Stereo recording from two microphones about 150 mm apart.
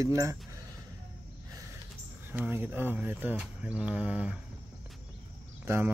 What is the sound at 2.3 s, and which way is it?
Speech, 15° right (ahead or behind).